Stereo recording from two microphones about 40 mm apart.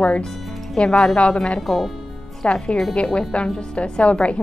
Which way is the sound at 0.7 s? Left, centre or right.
Centre.